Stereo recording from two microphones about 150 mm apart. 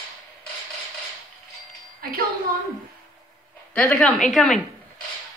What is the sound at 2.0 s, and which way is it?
Wind chime, 75° right (ahead or behind).